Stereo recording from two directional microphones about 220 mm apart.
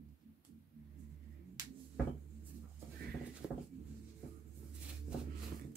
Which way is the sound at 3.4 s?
5° right (ahead or behind).